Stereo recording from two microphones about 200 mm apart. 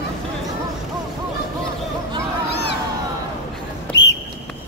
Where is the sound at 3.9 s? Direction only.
65° left (ahead or behind).